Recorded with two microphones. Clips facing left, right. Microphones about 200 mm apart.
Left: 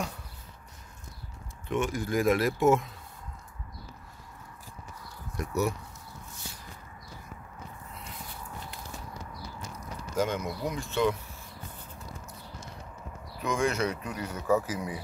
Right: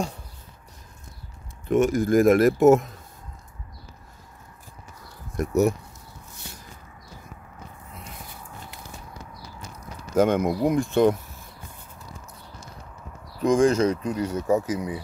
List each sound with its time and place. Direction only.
1.7 s speech: 45° right (ahead or behind)
5.4 s speech: 45° right (ahead or behind)
10.1 s speech: 55° right (ahead or behind)
13.4 s speech: 30° right (ahead or behind)